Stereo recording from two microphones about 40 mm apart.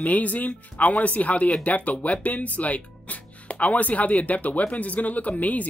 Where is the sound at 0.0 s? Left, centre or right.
Left.